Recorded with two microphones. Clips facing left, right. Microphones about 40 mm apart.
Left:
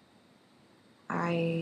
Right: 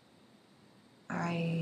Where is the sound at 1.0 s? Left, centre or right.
Centre.